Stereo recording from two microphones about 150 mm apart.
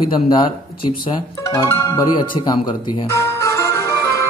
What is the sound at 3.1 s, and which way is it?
Music, 20° left (ahead or behind).